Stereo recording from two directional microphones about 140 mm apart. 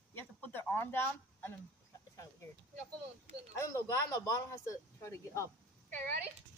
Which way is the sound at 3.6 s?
20° left (ahead or behind).